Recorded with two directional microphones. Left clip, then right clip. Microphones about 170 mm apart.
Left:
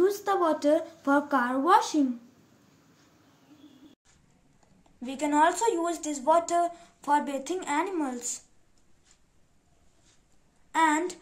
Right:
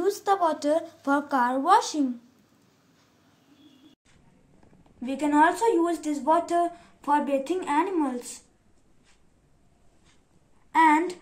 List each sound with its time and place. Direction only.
0.0 s speech: 15° right (ahead or behind)
5.0 s a woman's voice: 35° left (ahead or behind)
10.7 s a woman's voice: 30° left (ahead or behind)